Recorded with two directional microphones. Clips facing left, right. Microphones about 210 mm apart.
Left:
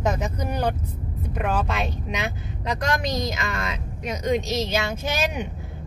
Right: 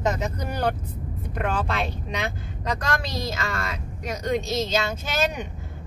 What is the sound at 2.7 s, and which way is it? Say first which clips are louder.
A woman's voice: left 3 dB; 15° left (ahead or behind).